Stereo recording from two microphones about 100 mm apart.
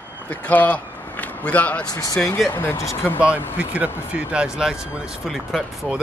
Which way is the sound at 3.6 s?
10° right (ahead or behind).